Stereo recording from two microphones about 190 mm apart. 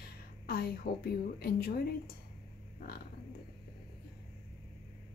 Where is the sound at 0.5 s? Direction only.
55° left (ahead or behind).